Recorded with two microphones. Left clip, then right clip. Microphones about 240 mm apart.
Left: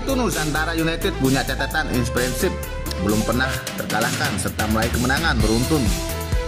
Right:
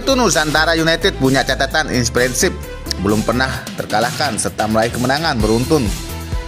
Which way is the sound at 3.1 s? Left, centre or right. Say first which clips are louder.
Right 5 dB; centre.